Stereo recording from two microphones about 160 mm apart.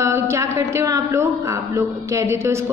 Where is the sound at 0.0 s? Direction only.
15° right (ahead or behind).